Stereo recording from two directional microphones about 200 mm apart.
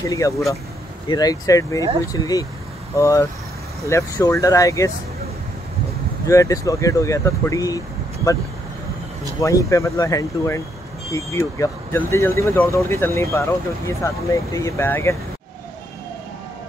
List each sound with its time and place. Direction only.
0.0 s speech: 15° left (ahead or behind)
6.2 s speech: 15° left (ahead or behind)
9.4 s speech: 15° left (ahead or behind)